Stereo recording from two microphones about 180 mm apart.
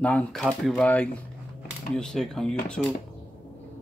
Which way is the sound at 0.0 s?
5° left (ahead or behind).